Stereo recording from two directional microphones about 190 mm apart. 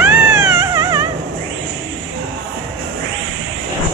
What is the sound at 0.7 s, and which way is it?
Dog, 20° right (ahead or behind).